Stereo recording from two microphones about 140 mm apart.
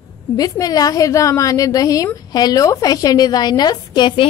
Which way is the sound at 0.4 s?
25° left (ahead or behind).